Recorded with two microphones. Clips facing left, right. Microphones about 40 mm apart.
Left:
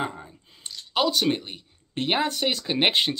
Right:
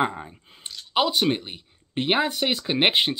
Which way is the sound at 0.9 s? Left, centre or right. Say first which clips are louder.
Right 1 dB; centre.